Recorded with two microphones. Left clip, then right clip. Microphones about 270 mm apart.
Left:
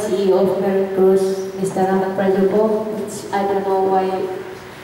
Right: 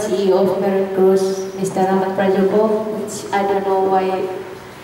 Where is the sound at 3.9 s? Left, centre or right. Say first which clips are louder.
Right 1 dB; centre.